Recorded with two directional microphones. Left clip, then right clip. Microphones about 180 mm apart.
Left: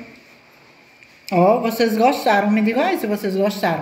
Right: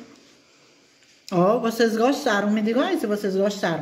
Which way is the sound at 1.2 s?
35° right (ahead or behind).